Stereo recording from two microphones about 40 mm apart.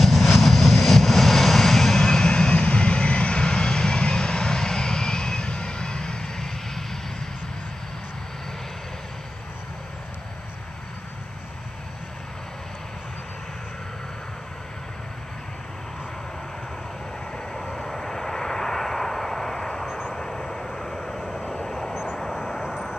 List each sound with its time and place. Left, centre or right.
0.0 s vehicle: centre
2.0 s vehicle: centre
17.7 s vehicle: centre
19.9 s vehicle: centre
20.2 s vehicle: centre
21.9 s vehicle: centre